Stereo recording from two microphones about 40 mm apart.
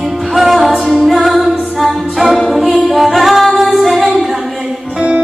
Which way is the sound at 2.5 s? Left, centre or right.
Centre.